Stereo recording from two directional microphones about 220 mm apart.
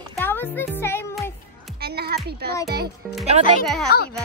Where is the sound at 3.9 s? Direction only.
45° left (ahead or behind).